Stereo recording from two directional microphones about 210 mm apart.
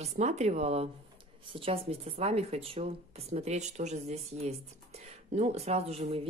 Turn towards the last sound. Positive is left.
turn(degrees=-30)  # may be behind; listen again after turning